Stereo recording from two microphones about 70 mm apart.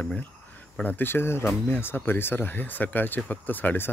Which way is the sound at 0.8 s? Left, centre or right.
Left.